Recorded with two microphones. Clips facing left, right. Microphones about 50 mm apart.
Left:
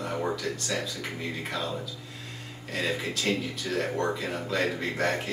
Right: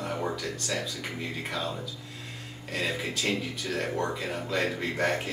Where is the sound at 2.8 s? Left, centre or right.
Centre.